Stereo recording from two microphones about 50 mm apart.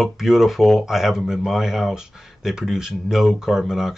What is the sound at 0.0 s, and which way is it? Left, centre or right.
Speech, centre.